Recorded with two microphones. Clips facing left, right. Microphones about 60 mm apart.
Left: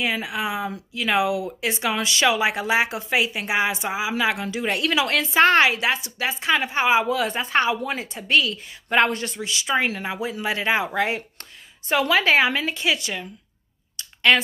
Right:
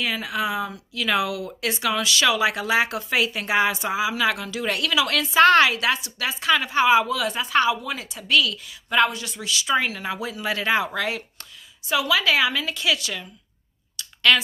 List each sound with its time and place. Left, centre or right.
0.0 s a woman's voice: left
11.9 s a woman's voice: left
13.9 s clicking: left